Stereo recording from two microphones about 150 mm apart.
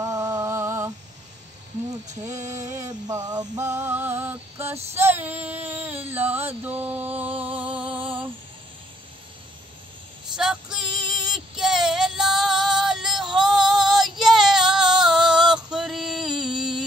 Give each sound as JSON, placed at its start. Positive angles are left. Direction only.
{"t": 0.0, "sound": "a sound", "side_deg": -25}
{"t": 2.2, "sound": "music", "side_deg": -20}
{"t": 5.2, "sound": "mantra", "side_deg": -10}
{"t": 10.3, "sound": "music", "side_deg": -5}